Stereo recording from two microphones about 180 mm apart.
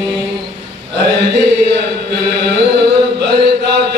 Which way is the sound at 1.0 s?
70° right (ahead or behind).